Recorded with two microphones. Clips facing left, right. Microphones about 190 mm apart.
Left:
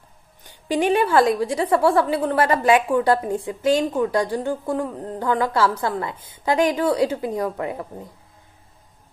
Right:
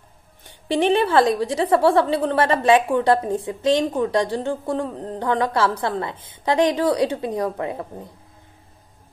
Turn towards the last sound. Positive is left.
turn(degrees=-30)  # may be behind; listen again after turning